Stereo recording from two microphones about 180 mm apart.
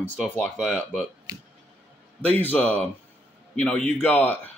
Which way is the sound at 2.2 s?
10° left (ahead or behind).